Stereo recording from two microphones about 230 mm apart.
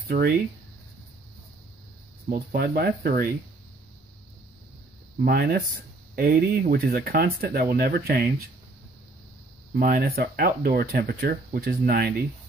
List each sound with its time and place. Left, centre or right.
0.1 s speech: right
2.3 s speech: right
5.2 s speech: right
9.8 s speech: right